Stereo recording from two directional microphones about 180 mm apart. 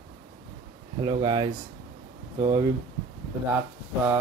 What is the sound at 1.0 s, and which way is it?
Speech, 25° right (ahead or behind).